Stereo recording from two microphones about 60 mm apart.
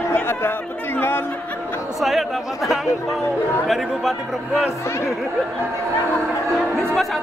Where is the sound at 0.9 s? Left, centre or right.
Left.